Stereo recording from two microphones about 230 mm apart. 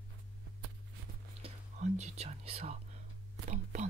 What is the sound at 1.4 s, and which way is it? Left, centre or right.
Whispering, right.